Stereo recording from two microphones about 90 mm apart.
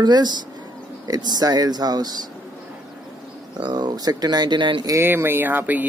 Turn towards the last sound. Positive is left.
turn(degrees=-20)  # may be behind; listen again after turning